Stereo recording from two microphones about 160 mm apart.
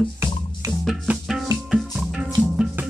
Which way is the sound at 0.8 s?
Centre (ahead or behind).